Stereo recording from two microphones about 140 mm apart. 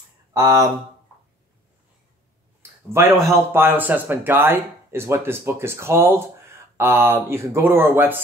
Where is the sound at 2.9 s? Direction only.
20° right (ahead or behind).